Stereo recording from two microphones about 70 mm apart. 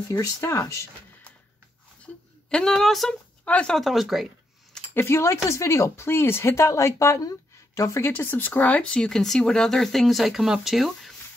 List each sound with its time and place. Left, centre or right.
0.1 s speech: left
2.5 s speech: centre
3.4 s speech: centre
3.7 s speech: centre
4.9 s speech: left
8.0 s speech: left; by 11.1 s centre